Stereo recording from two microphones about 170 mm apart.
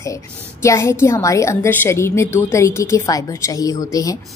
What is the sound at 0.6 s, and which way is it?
Speech, 15° left (ahead or behind).